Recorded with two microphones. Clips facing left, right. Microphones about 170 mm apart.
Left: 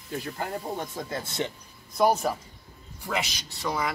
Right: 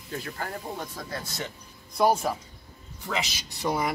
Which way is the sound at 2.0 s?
Centre (ahead or behind).